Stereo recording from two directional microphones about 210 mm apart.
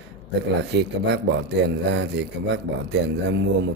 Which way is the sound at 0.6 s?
55° right (ahead or behind).